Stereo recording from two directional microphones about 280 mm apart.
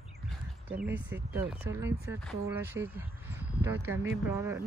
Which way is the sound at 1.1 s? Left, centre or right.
Centre.